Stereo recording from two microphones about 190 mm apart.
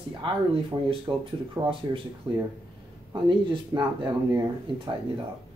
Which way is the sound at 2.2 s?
25° right (ahead or behind).